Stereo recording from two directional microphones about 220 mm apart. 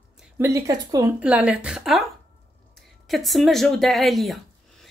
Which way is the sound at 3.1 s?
Centre (ahead or behind).